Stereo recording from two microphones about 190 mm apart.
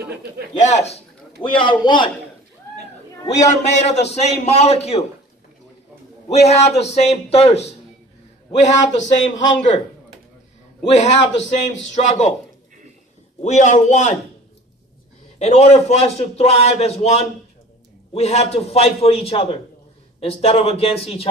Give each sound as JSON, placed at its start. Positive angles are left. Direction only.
{"t": 0.6, "sound": "a man's voice", "side_deg": 35}
{"t": 3.3, "sound": "a man's voice", "side_deg": 35}
{"t": 6.3, "sound": "a man's voice", "side_deg": 35}
{"t": 10.9, "sound": "a man's voice", "side_deg": 35}
{"t": 13.4, "sound": "a man's voice", "side_deg": 40}
{"t": 15.3, "sound": "a man's voice", "side_deg": 35}